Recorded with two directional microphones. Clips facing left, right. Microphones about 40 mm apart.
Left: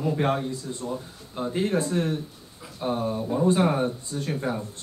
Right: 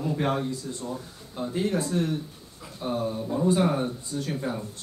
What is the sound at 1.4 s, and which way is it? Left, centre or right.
A man's voice, left.